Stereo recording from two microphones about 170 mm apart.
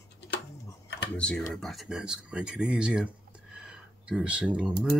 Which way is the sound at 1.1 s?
5° left (ahead or behind).